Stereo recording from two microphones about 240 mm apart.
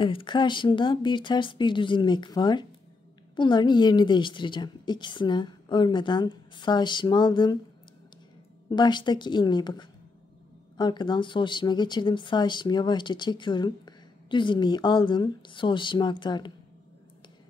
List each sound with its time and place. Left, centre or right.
0.0 s speech: left
8.6 s speech: centre